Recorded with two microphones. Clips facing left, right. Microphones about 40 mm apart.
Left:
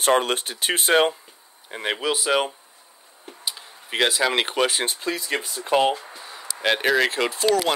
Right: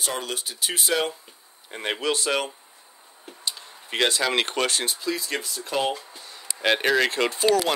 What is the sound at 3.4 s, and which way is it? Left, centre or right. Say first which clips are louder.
Speech: even; centre.